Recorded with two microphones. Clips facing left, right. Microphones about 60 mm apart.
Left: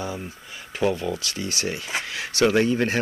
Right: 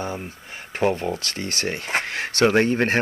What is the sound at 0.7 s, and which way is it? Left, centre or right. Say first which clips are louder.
Speech: right 2 dB; right.